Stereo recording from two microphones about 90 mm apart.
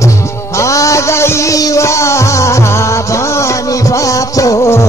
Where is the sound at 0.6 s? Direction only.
35° left (ahead or behind).